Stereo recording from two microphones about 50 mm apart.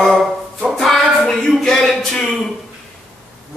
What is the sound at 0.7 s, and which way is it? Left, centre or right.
Music, centre.